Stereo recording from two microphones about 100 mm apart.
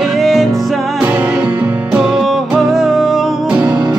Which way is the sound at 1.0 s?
15° right (ahead or behind).